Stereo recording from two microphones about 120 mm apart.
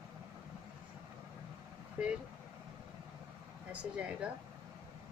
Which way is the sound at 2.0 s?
15° right (ahead or behind).